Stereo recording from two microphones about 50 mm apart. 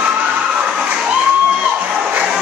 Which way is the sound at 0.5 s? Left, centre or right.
Centre.